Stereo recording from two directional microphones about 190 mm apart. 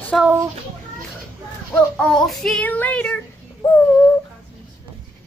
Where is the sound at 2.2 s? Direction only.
Centre (ahead or behind).